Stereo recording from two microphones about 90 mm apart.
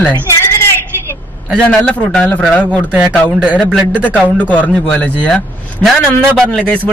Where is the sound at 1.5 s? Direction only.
10° left (ahead or behind).